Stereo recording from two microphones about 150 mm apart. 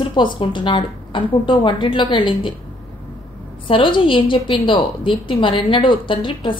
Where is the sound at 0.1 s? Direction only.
30° left (ahead or behind).